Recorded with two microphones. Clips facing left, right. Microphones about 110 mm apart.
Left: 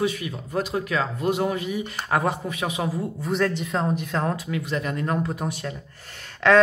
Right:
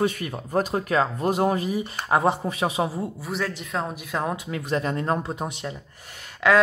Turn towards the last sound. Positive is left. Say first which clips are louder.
# left 2 dB
turn(degrees=-10)  # may be behind; listen again after turning